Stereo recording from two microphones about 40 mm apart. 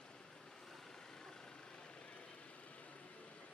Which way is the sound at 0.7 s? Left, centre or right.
Centre.